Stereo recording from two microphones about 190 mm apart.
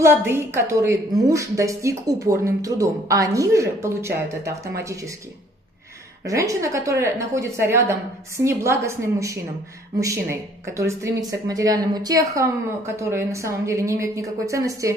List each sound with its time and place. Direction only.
0.0 s speech: 15° right (ahead or behind)
6.2 s speech: 15° right (ahead or behind)